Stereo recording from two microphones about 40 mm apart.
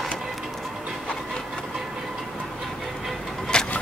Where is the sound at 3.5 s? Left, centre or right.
Left.